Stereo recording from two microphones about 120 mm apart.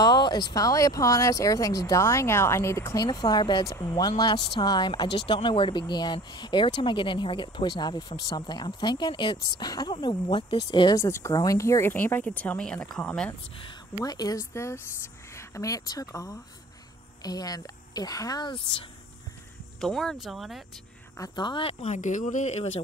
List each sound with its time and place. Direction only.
0.0 s speech: 35° left (ahead or behind)
3.1 s speech: 35° left (ahead or behind)
11.0 s speech: 25° left (ahead or behind); by 13.3 s 5° left (ahead or behind)
14.0 s speech: 30° left (ahead or behind)
19.8 s speech: 5° left (ahead or behind)
21.2 s speech: 40° left (ahead or behind)
21.8 s speech: 90° left; by 22.7 s 70° left (ahead or behind)